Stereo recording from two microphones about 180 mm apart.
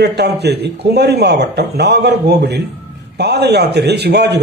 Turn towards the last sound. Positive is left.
turn(degrees=-65)  # may be behind; listen again after turning